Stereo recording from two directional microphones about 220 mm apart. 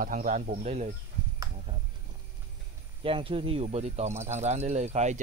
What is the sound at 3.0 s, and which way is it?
Speech, 25° right (ahead or behind).